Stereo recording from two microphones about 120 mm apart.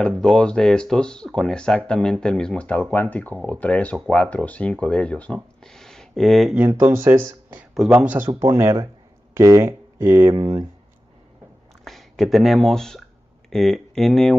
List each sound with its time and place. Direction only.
0.2 s speech: 5° left (ahead or behind)
6.7 s speech: 20° right (ahead or behind)
8.5 s speech: 25° right (ahead or behind)
11.8 s speech: centre (ahead or behind)